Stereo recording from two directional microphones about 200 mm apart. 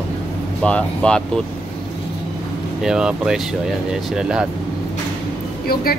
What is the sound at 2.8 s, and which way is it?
Speech, 5° right (ahead or behind).